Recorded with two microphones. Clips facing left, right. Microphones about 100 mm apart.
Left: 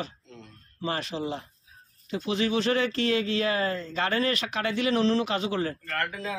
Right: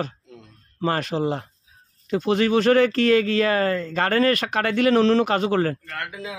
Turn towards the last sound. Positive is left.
turn(degrees=-10)  # may be behind; listen again after turning